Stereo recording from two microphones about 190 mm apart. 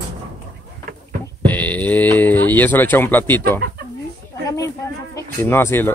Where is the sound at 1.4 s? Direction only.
10° left (ahead or behind).